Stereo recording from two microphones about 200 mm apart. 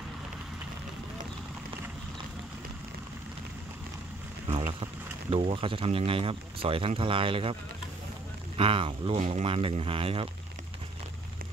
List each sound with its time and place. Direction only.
5.3 s speech: 30° right (ahead or behind)
8.5 s speech: 25° right (ahead or behind)